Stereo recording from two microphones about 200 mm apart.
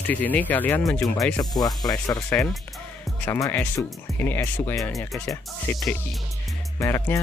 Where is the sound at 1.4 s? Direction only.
20° left (ahead or behind).